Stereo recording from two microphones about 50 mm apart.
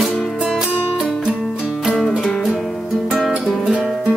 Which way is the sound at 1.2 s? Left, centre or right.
Centre.